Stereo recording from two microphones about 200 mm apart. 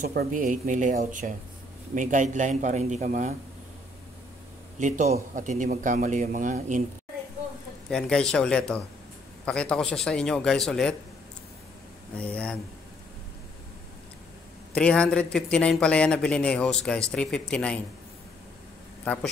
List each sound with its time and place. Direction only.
0.0 s a man's voice: 45° right (ahead or behind)
4.7 s a man's voice: 35° right (ahead or behind)
7.9 s speech: 5° left (ahead or behind)
12.2 s speech: 5° left (ahead or behind)
14.8 s speech: 5° left (ahead or behind)